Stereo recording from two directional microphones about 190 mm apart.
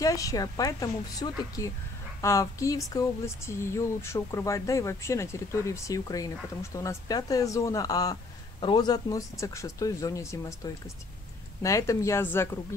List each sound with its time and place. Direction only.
0.0 s speech: 15° left (ahead or behind)